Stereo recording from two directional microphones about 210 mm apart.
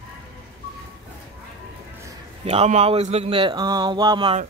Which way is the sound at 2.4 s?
30° right (ahead or behind).